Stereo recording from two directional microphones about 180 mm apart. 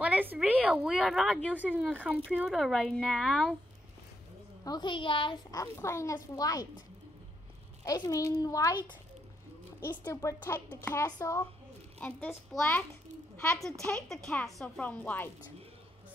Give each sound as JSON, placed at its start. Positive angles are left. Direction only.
{"t": 0.0, "sound": "a sound", "side_deg": -10}
{"t": 1.5, "sound": "a woman's voice", "side_deg": -10}
{"t": 4.6, "sound": "a woman's voice", "side_deg": 25}
{"t": 7.8, "sound": "a woman's voice", "side_deg": 20}
{"t": 9.8, "sound": "a woman's voice", "side_deg": 20}
{"t": 12.0, "sound": "a woman's voice", "side_deg": 10}